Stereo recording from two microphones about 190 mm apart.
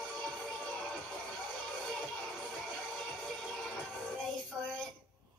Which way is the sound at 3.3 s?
5° left (ahead or behind).